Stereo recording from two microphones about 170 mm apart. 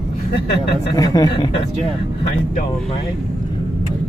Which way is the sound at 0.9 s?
20° left (ahead or behind).